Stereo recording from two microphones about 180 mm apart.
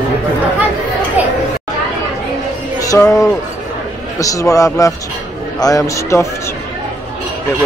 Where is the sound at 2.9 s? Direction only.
15° left (ahead or behind).